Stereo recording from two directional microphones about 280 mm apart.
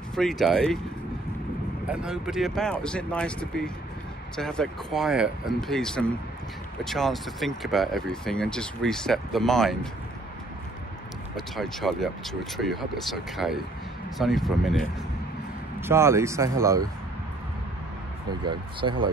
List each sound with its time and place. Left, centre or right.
0.1 s speech: centre
1.9 s speech: centre
11.3 s speech: centre
18.4 s speech: centre